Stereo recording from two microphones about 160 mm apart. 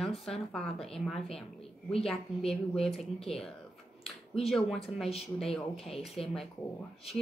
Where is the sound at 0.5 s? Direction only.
5° left (ahead or behind).